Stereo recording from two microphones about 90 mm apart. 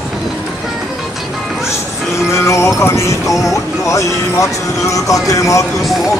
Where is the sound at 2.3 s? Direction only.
35° left (ahead or behind).